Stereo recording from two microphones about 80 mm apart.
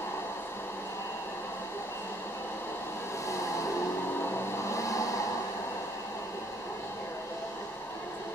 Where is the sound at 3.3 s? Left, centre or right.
Left.